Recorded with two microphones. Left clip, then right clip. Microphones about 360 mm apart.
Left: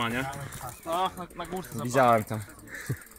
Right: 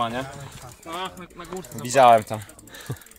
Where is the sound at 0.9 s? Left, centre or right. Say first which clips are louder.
Left 3 dB; centre.